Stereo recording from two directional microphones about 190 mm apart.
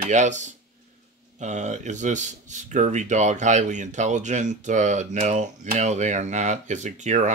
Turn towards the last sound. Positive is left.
turn(degrees=-40)  # may be behind; listen again after turning